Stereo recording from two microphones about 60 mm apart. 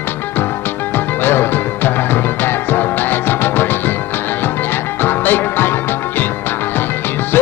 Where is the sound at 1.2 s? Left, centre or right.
Left.